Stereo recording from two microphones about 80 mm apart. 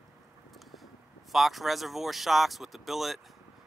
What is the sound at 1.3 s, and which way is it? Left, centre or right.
Speech, centre.